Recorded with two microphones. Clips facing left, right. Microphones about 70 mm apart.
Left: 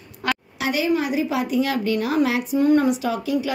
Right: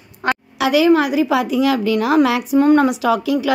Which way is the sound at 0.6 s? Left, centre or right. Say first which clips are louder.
Right 9 dB; right.